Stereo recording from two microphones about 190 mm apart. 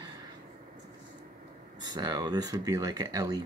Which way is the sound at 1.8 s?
20° right (ahead or behind).